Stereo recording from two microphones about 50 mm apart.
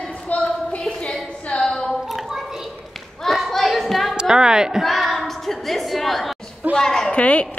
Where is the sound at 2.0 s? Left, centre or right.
Centre.